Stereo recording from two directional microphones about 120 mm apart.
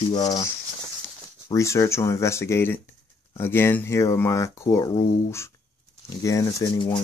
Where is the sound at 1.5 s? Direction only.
25° left (ahead or behind).